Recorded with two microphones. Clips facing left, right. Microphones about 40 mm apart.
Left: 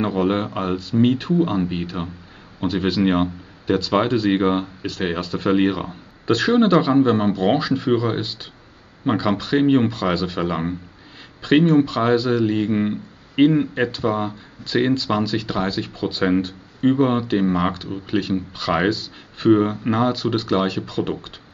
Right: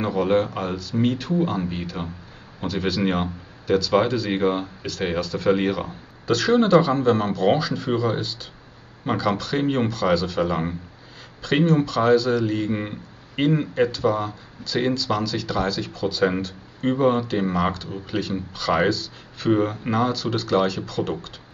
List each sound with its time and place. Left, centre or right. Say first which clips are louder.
0.0 s speech: even; left
13.4 s speech: left 6 dB; centre
13.7 s speech: even; left